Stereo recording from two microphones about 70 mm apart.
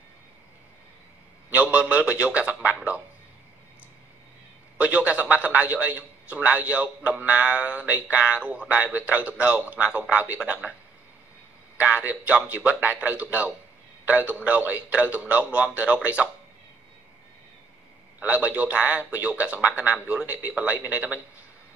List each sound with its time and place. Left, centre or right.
1.5 s a man's voice: centre
4.7 s a man's voice: right
11.8 s a man's voice: right
18.2 s a man's voice: right